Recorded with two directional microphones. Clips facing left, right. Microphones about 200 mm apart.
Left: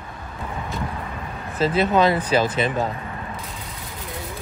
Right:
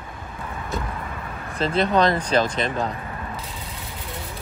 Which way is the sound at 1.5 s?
5° left (ahead or behind).